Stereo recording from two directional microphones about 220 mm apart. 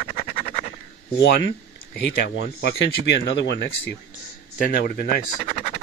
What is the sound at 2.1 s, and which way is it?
Speech, 50° left (ahead or behind).